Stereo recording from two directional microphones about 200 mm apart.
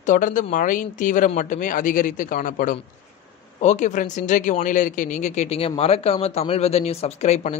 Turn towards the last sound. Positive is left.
turn(degrees=35)  # may be behind; listen again after turning